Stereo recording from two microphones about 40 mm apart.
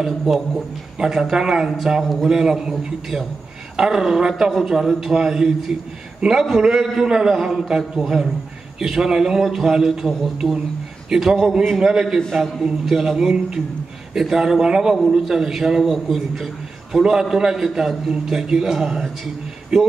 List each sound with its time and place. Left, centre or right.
0.0 s a man's voice: centre
3.7 s a sound: centre
4.0 s a man's voice: centre
6.6 s a man's voice: centre
12.3 s a man's voice: centre
12.8 s a man's voice: centre